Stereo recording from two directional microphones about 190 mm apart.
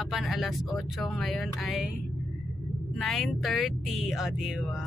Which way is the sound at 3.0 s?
Centre (ahead or behind).